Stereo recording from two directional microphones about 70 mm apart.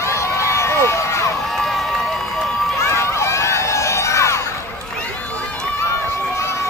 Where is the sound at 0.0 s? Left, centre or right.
Left.